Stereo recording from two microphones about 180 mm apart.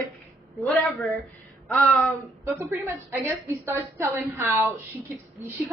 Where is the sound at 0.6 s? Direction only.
10° left (ahead or behind).